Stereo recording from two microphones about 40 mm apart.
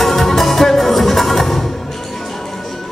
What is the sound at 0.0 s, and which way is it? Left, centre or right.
Music, centre.